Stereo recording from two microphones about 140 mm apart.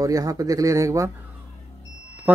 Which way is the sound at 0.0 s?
25° right (ahead or behind).